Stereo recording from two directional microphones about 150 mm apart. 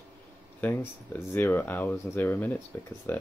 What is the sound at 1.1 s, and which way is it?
Speech, 15° left (ahead or behind).